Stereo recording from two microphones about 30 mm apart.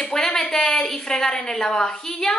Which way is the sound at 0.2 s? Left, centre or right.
Centre.